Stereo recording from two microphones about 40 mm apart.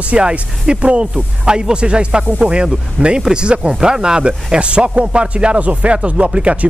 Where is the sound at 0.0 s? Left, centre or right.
Right.